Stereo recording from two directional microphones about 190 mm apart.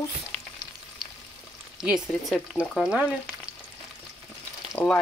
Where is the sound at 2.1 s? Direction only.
5° left (ahead or behind).